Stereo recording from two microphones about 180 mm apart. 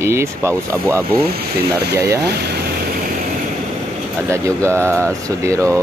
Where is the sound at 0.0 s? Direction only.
15° right (ahead or behind).